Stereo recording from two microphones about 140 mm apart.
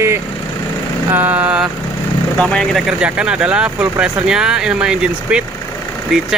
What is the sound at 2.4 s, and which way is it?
Speech, 5° left (ahead or behind).